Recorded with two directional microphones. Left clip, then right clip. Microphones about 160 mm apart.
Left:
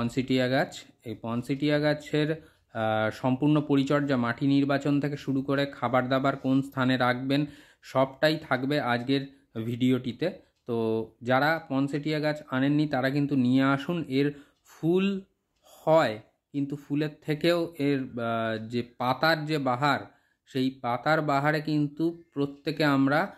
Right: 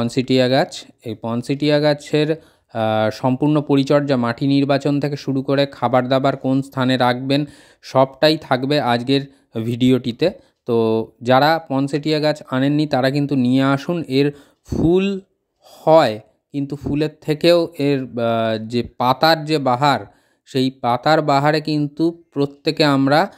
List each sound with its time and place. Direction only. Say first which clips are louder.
0.0 s speech: right 10 dB; 45° right (ahead or behind)